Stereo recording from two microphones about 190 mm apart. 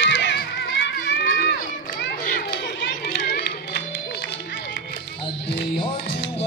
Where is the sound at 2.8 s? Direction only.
60° left (ahead or behind).